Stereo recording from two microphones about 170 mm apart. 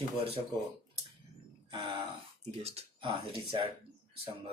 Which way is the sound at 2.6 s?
40° right (ahead or behind).